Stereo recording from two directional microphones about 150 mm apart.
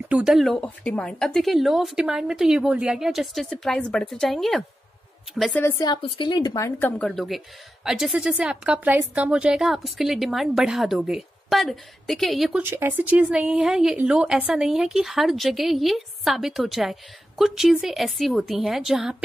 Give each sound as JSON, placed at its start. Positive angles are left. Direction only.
{"t": 0.1, "sound": "speech", "side_deg": -5}
{"t": 0.6, "sound": "speech", "side_deg": 10}
{"t": 5.6, "sound": "a woman's voice", "side_deg": 20}
{"t": 7.0, "sound": "speech", "side_deg": 0}
{"t": 12.6, "sound": "speech", "side_deg": -15}